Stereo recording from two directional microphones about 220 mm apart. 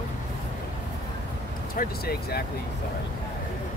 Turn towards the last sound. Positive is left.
turn(degrees=45)  # may be behind; listen again after turning